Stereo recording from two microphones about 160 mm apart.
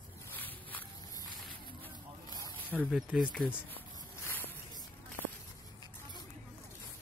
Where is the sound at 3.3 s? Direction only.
10° left (ahead or behind).